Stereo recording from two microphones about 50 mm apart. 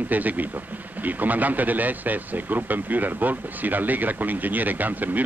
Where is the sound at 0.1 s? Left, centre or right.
Right.